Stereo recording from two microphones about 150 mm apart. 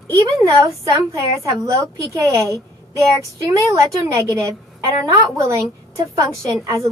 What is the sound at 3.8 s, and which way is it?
A woman's voice, 20° right (ahead or behind).